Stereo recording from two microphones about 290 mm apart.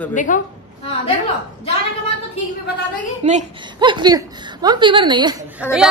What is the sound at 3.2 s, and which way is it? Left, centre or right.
A woman's voice, centre.